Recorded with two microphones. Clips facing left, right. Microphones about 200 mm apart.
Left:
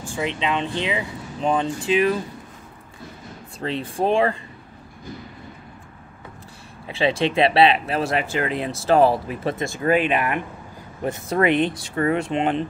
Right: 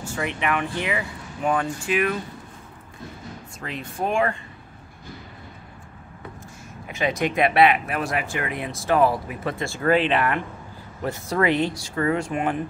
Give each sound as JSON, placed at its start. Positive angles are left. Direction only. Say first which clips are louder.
{"t": 0.0, "sound": "speech", "louder": "left 2 dB", "side_deg": 15}
{"t": 3.5, "sound": "speech", "louder": "left 7 dB", "side_deg": 30}
{"t": 6.9, "sound": "speech", "louder": "left 3 dB", "side_deg": 30}